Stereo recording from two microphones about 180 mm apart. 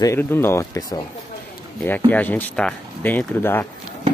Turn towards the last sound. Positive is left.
turn(degrees=10)  # may be behind; listen again after turning